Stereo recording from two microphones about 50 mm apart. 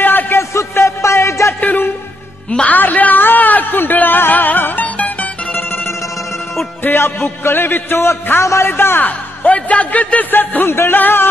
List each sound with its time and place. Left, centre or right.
0.0 s a sound: left
0.4 s music: left
2.5 s a woman's voice: left
2.8 s music: left
4.8 s music: left
6.8 s a man's voice: left
9.0 s a man's voice: left
10.7 s a man's voice: left
11.0 s a man's voice: left